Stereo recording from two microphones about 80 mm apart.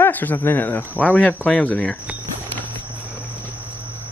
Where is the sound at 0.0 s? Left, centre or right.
Left.